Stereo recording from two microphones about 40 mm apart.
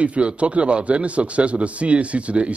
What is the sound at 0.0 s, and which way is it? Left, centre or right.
A man's voice, right.